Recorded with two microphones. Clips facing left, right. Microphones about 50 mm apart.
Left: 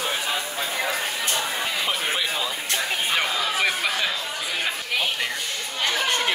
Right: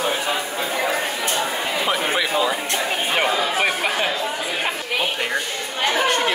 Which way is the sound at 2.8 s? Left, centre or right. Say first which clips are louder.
Right 2 dB; right.